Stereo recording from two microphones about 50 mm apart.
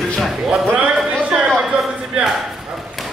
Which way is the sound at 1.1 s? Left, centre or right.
Centre.